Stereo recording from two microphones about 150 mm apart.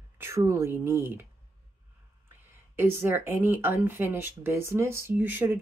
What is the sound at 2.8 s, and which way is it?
Speech, 15° right (ahead or behind).